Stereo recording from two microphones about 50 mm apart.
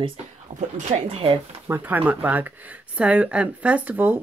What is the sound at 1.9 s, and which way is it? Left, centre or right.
Speech, right.